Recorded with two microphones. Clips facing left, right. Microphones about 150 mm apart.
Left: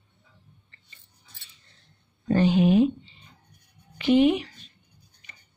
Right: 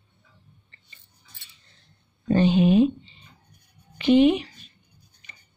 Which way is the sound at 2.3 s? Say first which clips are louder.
Right 1 dB; 20° right (ahead or behind).